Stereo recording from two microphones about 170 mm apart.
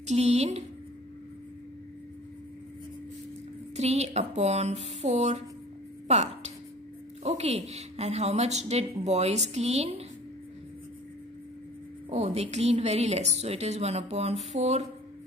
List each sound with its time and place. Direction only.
0.0 s a woman's voice: 40° right (ahead or behind)
3.7 s a woman's voice: 40° right (ahead or behind)
12.1 s speech: 40° right (ahead or behind)